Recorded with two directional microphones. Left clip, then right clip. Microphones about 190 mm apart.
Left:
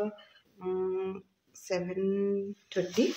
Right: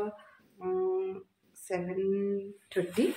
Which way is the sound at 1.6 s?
10° left (ahead or behind).